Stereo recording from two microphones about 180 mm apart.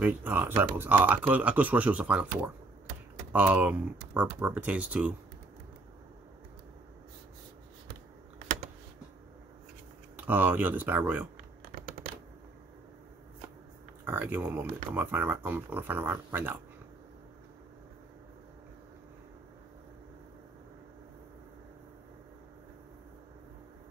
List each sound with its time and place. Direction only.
0.0 s speech: 10° right (ahead or behind)
10.1 s speech: 10° right (ahead or behind)
11.7 s typing: 55° right (ahead or behind)
14.0 s speech: 10° right (ahead or behind)